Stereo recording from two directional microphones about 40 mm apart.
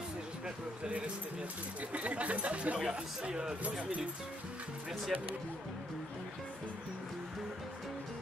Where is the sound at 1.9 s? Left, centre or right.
Right.